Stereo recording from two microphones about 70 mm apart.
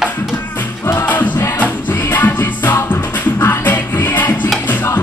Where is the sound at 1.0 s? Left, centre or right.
Left.